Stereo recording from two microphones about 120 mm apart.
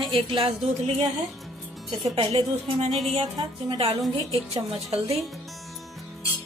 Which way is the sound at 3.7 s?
50° right (ahead or behind).